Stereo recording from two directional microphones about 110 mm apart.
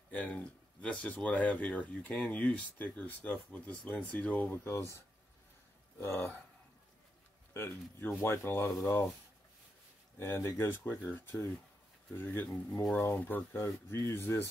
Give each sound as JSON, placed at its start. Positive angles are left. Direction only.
{"t": 0.1, "sound": "speech", "side_deg": 10}
{"t": 5.9, "sound": "speech", "side_deg": 25}
{"t": 7.5, "sound": "speech", "side_deg": 20}
{"t": 10.1, "sound": "speech", "side_deg": 25}